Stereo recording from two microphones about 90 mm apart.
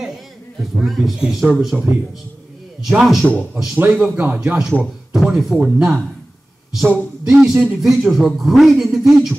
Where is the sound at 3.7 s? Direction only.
20° right (ahead or behind).